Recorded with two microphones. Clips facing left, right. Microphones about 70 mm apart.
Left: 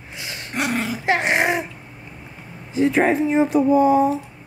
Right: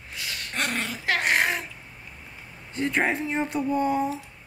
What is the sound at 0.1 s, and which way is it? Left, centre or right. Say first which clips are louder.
Dog: left 2 dB; left.